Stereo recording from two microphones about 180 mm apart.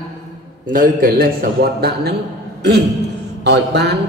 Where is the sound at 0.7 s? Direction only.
50° right (ahead or behind).